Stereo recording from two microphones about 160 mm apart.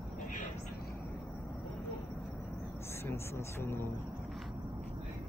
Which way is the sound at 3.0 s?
15° left (ahead or behind).